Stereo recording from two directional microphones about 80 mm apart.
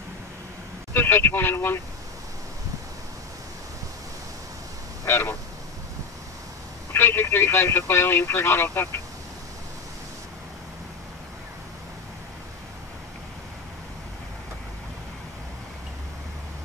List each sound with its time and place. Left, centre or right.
0.9 s speech: left
5.0 s speech: left
6.9 s speech: left